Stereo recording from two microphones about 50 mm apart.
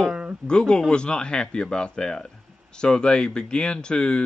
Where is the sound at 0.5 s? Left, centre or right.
Centre.